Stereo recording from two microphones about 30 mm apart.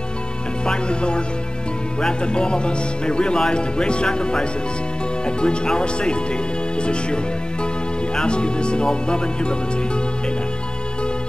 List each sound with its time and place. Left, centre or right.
0.7 s speech: left
8.3 s speech: left